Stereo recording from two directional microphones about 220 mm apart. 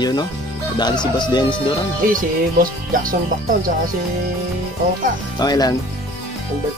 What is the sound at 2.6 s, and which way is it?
Speech, 40° right (ahead or behind).